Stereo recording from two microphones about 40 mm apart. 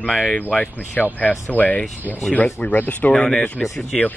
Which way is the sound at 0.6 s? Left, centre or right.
Left.